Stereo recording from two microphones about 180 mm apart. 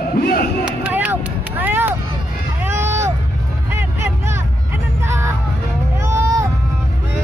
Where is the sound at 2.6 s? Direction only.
10° right (ahead or behind).